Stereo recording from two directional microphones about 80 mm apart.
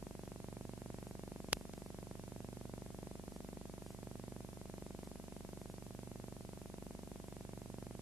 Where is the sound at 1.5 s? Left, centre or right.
Centre.